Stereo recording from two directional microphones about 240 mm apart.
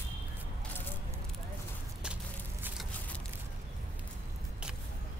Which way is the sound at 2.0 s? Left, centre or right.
Centre.